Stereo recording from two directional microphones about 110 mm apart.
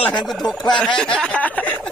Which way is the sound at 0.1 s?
Centre (ahead or behind).